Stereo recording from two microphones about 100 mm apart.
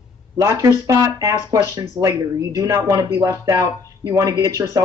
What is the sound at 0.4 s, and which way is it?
Speech, 30° right (ahead or behind).